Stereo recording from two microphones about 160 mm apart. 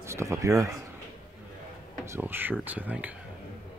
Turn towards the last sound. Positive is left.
turn(degrees=-10)  # may be behind; listen again after turning